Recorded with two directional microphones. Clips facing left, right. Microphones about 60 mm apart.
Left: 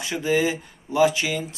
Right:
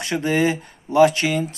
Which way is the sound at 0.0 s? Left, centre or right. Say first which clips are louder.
Right 2 dB; right.